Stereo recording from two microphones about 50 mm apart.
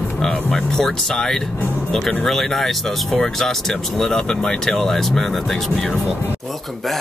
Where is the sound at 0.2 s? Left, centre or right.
Centre.